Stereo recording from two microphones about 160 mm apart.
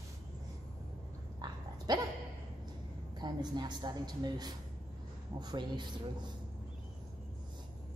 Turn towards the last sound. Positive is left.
turn(degrees=-30)  # may be behind; listen again after turning